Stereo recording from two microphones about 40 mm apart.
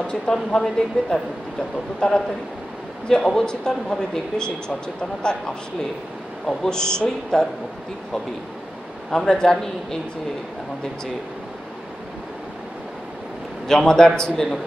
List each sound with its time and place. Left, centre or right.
0.3 s a man's voice: centre
2.0 s a man's voice: centre
9.1 s a man's voice: centre
13.7 s a man's voice: centre